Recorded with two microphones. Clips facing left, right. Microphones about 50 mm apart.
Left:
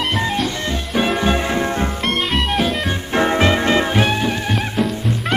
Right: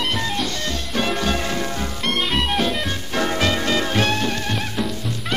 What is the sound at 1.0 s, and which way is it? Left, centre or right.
Music, centre.